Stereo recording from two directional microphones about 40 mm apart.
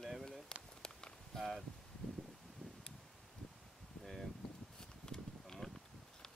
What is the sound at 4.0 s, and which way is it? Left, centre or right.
Rustling leaves, centre.